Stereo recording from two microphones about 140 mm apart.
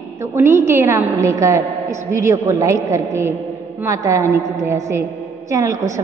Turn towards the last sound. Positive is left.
turn(degrees=-25)  # may be behind; listen again after turning